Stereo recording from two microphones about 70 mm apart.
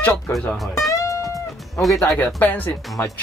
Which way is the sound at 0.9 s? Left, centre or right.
Left.